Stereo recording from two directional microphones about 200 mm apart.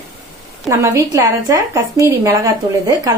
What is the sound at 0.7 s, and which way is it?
Speech, 15° right (ahead or behind).